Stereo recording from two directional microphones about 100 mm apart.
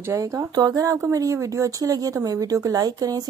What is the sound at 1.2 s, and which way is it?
Speech, 35° right (ahead or behind).